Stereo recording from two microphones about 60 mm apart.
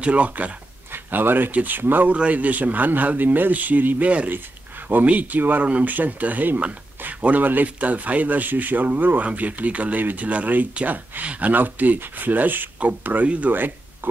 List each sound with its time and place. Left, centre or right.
0.0 s speech: right
0.9 s speech: right